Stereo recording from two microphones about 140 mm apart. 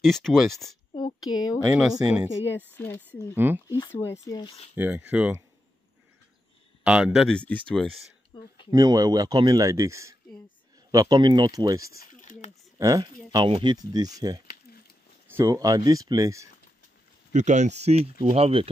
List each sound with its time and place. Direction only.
0.0 s speech: centre (ahead or behind)
0.9 s a sound: 30° left (ahead or behind)
1.7 s speech: 10° right (ahead or behind)
2.7 s speech: 15° left (ahead or behind)
3.3 s speech: 15° right (ahead or behind)
3.6 s speech: 35° left (ahead or behind)
3.9 s speech: 20° left (ahead or behind)
4.7 s speech: 10° right (ahead or behind)
6.8 s speech: 5° right (ahead or behind)
8.3 s speech: 30° left (ahead or behind)
8.6 s speech: 25° right (ahead or behind)
12.0 s a sound: 70° left (ahead or behind)
12.7 s speech: 25° right (ahead or behind)
17.3 s speech: 55° right (ahead or behind)